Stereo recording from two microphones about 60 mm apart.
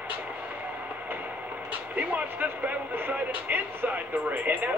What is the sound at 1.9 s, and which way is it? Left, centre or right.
Speech, right.